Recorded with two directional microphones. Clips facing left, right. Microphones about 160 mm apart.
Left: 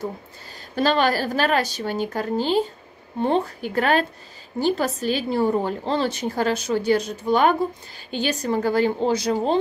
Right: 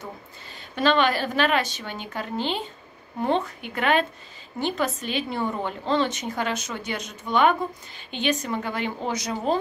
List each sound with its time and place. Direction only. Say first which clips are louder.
0.7 s a woman's voice: left 1 dB; 40° left (ahead or behind)